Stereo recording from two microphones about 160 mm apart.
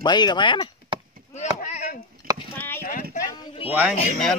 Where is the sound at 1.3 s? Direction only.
45° left (ahead or behind).